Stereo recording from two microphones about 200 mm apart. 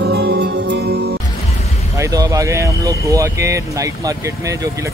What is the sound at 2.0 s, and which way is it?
Speech, 15° right (ahead or behind).